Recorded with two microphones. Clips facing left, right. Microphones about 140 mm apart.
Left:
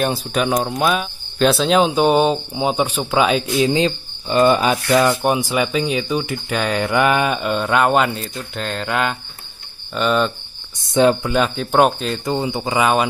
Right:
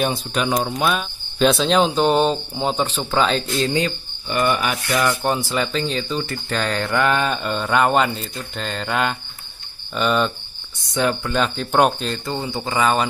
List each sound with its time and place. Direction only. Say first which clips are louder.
0.1 s speech: left 2 dB; 5° left (ahead or behind)
3.7 s speech: left 4 dB; 25° left (ahead or behind)
5.1 s speech: left 3 dB; 15° left (ahead or behind)
7.3 s speech: left 2 dB; 5° left (ahead or behind)
10.9 s speech: left 6 dB; 25° left (ahead or behind)
11.3 s speech: left 2 dB; 5° left (ahead or behind)
12.3 s speech: left 7 dB; 20° left (ahead or behind)